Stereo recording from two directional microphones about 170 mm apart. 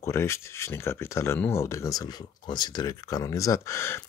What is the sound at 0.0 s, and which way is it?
Speech, 15° left (ahead or behind).